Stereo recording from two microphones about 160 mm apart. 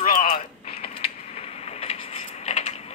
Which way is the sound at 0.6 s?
40° left (ahead or behind).